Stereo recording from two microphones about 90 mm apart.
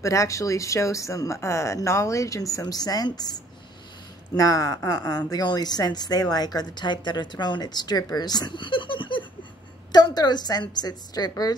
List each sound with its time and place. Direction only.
0.0 s a woman's voice: 35° left (ahead or behind); by 9.2 s 65° left (ahead or behind)
9.9 s speech: 50° left (ahead or behind)